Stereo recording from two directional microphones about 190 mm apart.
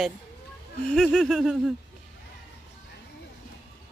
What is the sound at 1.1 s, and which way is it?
Speech, centre (ahead or behind).